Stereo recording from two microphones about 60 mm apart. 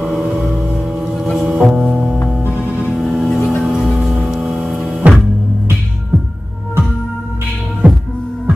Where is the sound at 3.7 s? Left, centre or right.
Centre.